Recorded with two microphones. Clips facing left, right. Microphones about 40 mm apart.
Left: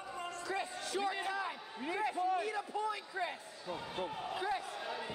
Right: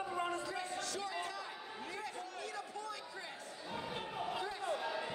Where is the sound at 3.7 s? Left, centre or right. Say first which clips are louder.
Left 3 dB; centre.